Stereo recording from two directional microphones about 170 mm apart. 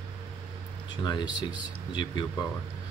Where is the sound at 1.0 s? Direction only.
25° left (ahead or behind).